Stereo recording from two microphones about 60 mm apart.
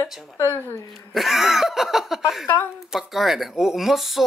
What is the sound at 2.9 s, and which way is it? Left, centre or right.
Speech, centre.